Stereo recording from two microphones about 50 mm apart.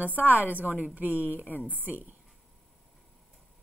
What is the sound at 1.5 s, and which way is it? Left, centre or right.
Speech, left.